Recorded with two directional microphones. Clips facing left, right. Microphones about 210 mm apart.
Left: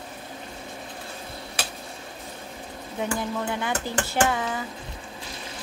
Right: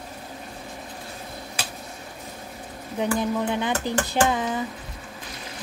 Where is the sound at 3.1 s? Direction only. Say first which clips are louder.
Right 5 dB; 20° right (ahead or behind).